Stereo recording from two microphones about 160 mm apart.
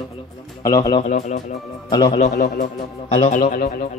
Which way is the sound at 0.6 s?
20° left (ahead or behind).